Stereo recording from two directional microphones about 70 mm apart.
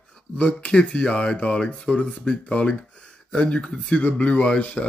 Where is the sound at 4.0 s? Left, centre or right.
Centre.